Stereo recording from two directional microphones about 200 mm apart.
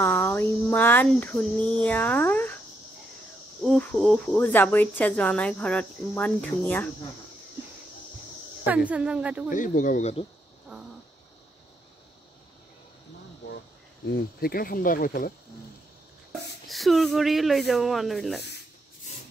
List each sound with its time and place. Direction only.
0.0 s speech: 10° left (ahead or behind)
3.6 s speech: 5° left (ahead or behind)
8.6 s speech: 5° right (ahead or behind)
9.5 s speech: 40° left (ahead or behind)
14.0 s speech: 55° left (ahead or behind)
16.6 s speech: centre (ahead or behind)